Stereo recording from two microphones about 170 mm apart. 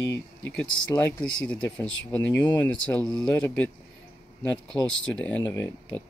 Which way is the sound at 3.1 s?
20° left (ahead or behind).